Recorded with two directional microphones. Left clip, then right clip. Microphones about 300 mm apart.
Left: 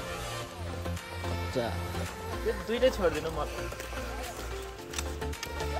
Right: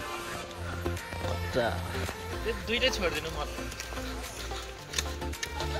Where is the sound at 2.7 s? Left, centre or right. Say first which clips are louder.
Left 2 dB; left.